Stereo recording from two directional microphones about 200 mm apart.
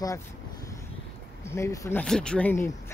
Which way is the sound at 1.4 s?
15° left (ahead or behind).